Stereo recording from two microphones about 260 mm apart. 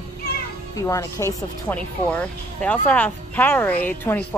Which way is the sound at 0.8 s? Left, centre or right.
Centre.